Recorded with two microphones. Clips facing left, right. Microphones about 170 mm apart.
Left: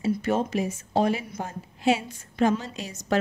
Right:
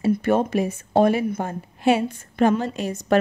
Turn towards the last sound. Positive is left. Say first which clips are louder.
# right 7 dB
turn(degrees=-55)  # may be behind; listen again after turning